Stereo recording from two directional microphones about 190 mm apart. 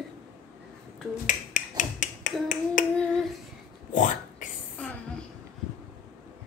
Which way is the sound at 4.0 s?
45° left (ahead or behind).